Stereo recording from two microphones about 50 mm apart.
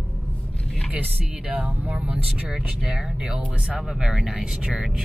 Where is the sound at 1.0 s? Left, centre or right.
Right.